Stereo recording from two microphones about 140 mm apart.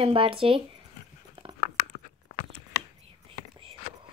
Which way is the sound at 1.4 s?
40° right (ahead or behind).